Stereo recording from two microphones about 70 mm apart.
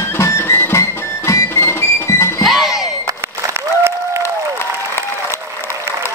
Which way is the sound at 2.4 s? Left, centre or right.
Centre.